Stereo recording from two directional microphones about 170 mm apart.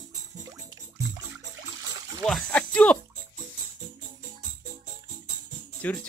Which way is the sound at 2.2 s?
5° left (ahead or behind).